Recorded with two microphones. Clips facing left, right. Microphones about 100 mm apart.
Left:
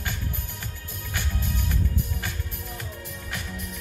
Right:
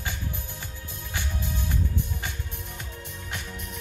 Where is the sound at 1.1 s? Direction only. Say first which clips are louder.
Left 1 dB; 20° right (ahead or behind).